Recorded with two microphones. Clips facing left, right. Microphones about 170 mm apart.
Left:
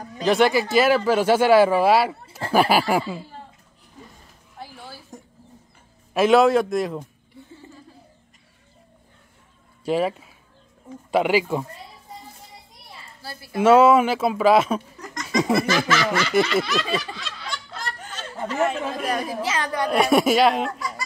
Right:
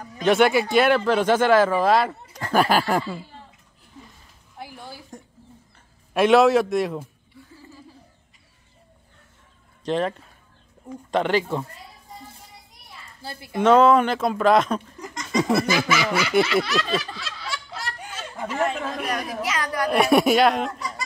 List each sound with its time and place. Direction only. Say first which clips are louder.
0.2 s speech: right 1 dB; centre (ahead or behind)
5.1 s a sound: even; 5° left (ahead or behind)
6.1 s speech: even; centre (ahead or behind)
7.3 s a sound: left 3 dB; 25° left (ahead or behind)
9.8 s speech: left 2 dB; 5° left (ahead or behind)
13.2 s speech: right 2 dB; 25° right (ahead or behind)
13.6 s speech: left 1 dB; 5° left (ahead or behind)
15.2 s laughter: left 1 dB; 5° left (ahead or behind)
15.5 s speech: left 1 dB; 10° right (ahead or behind)
19.0 s a woman's voice: left 3 dB; 30° left (ahead or behind)
19.9 s speech: right 1 dB; centre (ahead or behind)